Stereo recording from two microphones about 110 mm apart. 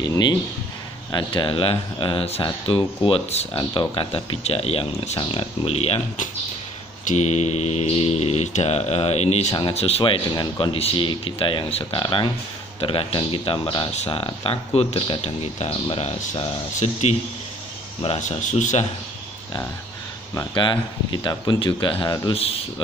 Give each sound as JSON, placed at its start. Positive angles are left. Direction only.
{"t": 0.0, "sound": "speech", "side_deg": 40}
{"t": 3.1, "sound": "speech", "side_deg": 75}
{"t": 3.9, "sound": "speech", "side_deg": 55}
{"t": 7.2, "sound": "mantra", "side_deg": 90}
{"t": 9.8, "sound": "speech", "side_deg": 65}
{"t": 10.7, "sound": "speech", "side_deg": 55}
{"t": 15.2, "sound": "speech", "side_deg": 75}
{"t": 20.5, "sound": "speech", "side_deg": 45}
{"t": 22.3, "sound": "speech", "side_deg": 60}